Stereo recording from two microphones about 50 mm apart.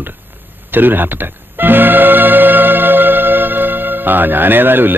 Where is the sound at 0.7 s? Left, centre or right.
Right.